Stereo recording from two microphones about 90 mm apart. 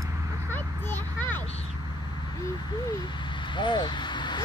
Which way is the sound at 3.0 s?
60° left (ahead or behind).